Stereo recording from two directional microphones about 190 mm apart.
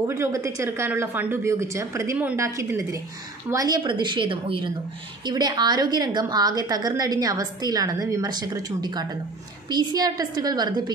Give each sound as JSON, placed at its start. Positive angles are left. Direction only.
{"t": 0.0, "sound": "a woman's voice", "side_deg": -15}